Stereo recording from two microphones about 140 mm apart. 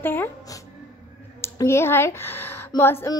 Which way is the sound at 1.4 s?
20° left (ahead or behind).